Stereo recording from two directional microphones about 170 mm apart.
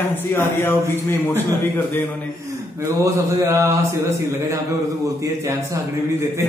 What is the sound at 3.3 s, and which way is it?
Speech, 15° right (ahead or behind).